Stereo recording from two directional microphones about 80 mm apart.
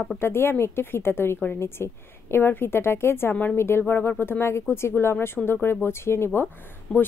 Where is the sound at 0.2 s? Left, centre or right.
Left.